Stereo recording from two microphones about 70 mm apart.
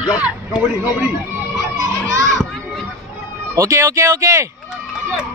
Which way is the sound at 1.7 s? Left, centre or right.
Right.